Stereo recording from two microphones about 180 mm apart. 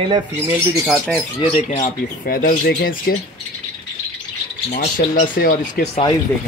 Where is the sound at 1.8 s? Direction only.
55° left (ahead or behind).